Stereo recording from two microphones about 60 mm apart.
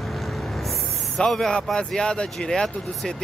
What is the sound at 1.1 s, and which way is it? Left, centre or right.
Speech, centre.